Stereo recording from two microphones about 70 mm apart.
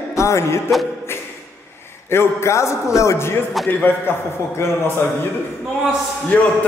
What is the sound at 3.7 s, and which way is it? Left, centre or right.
Speech, left.